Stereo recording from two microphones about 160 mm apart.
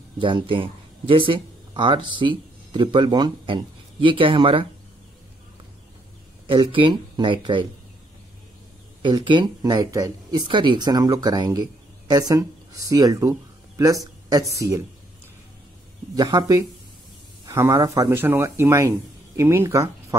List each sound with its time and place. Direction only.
0.2 s speech: 30° right (ahead or behind)
6.4 s speech: 30° right (ahead or behind)
9.0 s speech: 30° right (ahead or behind)
16.2 s speech: 25° right (ahead or behind)